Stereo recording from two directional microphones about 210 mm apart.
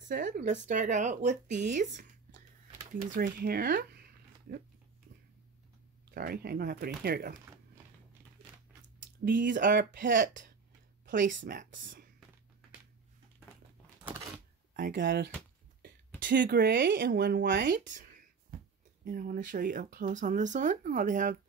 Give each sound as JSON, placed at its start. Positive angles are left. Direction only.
{"t": 0.1, "sound": "speech", "side_deg": -35}
{"t": 6.1, "sound": "speech", "side_deg": -45}
{"t": 7.3, "sound": "a sound", "side_deg": -15}
{"t": 9.2, "sound": "speech", "side_deg": -40}
{"t": 14.7, "sound": "speech", "side_deg": -40}
{"t": 17.7, "sound": "speech", "side_deg": -40}
{"t": 19.0, "sound": "speech", "side_deg": -40}